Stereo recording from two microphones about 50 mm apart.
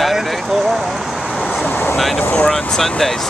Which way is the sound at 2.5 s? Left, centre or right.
Centre.